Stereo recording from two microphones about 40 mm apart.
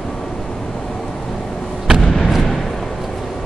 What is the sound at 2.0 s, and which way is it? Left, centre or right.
Artillery fire, centre.